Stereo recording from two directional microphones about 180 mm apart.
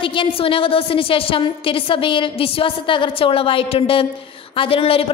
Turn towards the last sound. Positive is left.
turn(degrees=30)  # may be behind; listen again after turning